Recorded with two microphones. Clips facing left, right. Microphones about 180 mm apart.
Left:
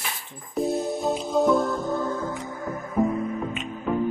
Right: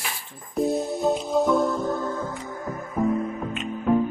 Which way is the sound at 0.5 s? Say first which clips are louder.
Right 1 dB; centre (ahead or behind).